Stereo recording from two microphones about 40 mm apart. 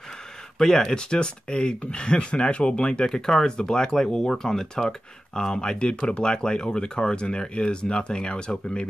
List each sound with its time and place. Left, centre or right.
0.6 s speech: centre
3.1 s speech: centre